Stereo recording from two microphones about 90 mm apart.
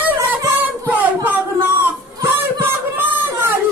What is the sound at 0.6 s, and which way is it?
Child singing, 20° right (ahead or behind).